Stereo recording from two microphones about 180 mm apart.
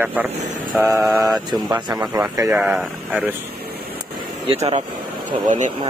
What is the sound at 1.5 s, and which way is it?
Speech, 25° right (ahead or behind).